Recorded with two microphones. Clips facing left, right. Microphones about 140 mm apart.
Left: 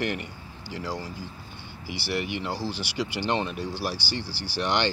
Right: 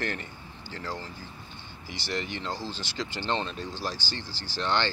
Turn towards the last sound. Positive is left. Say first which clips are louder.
# left 2 dB
turn(degrees=15)  # may be behind; listen again after turning